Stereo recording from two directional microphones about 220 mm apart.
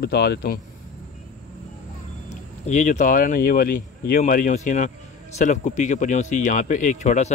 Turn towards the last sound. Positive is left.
turn(degrees=35)  # may be behind; listen again after turning